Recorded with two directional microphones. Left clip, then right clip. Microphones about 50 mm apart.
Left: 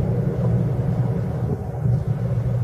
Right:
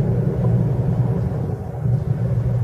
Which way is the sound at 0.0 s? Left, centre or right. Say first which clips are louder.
Right 2 dB; centre.